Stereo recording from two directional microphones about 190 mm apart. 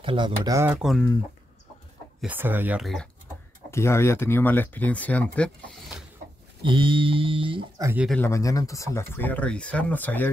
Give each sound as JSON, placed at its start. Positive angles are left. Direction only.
{"t": 0.0, "sound": "speech", "side_deg": -25}
{"t": 0.7, "sound": "speech", "side_deg": 0}
{"t": 2.2, "sound": "speech", "side_deg": -10}
{"t": 3.7, "sound": "speech", "side_deg": 15}
{"t": 6.6, "sound": "speech", "side_deg": -25}
{"t": 8.1, "sound": "speech", "side_deg": 10}